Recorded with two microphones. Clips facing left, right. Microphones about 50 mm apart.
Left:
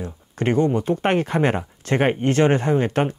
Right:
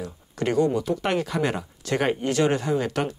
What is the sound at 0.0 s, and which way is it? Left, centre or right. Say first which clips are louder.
Speech: left 3 dB; left.